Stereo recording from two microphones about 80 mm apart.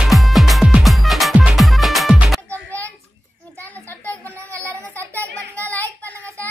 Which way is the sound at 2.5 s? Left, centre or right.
Centre.